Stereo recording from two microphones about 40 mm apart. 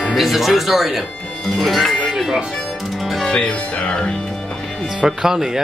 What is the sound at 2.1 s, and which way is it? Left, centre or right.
Speech, centre.